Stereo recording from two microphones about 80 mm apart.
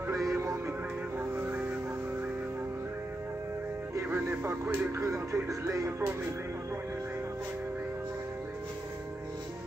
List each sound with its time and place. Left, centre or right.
0.1 s music: right
1.1 s music: right
4.1 s speech: right